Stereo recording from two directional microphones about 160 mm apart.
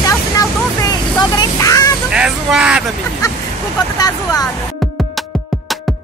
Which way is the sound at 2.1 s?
5° right (ahead or behind).